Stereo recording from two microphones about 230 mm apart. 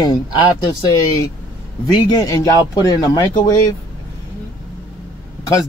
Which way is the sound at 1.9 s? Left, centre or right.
Centre.